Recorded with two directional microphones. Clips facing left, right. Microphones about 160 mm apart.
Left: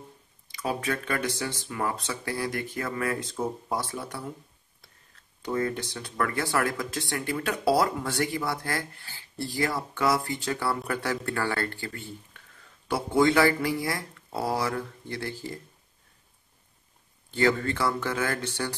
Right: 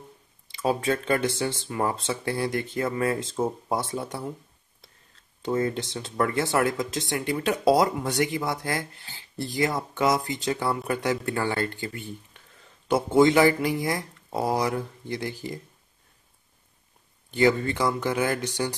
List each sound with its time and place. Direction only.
0.5 s speech: 25° right (ahead or behind)
5.4 s speech: 25° right (ahead or behind)
17.3 s speech: 15° right (ahead or behind)